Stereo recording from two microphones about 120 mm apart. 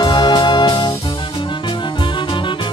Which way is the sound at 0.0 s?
40° left (ahead or behind).